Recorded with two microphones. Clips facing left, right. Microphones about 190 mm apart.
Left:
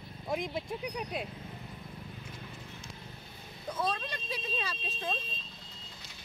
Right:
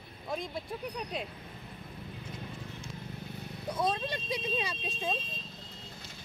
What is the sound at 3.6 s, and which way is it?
Speech, 15° right (ahead or behind).